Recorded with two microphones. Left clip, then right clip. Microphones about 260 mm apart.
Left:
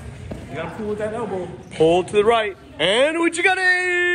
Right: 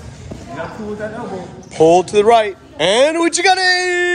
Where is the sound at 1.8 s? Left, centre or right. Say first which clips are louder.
Right 6 dB; centre.